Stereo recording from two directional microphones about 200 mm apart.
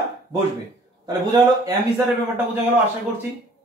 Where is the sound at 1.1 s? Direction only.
20° right (ahead or behind).